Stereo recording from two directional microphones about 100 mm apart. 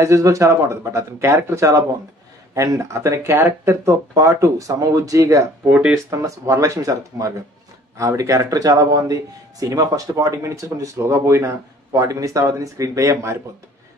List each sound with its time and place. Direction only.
0.0 s a man's voice: 30° right (ahead or behind)
5.7 s speech: 15° right (ahead or behind)
6.0 s a man's voice: 30° right (ahead or behind)